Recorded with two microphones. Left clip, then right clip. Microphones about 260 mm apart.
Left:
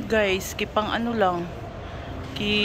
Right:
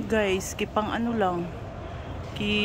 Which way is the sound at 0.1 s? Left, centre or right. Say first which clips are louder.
Left 3 dB; centre.